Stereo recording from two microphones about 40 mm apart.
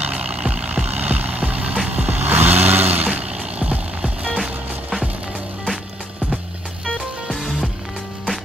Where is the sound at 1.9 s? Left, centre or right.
Right.